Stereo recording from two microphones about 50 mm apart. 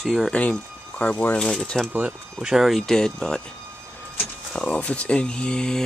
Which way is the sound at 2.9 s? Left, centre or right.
Centre.